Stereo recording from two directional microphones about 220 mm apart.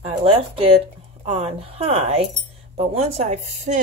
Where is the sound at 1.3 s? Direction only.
30° right (ahead or behind).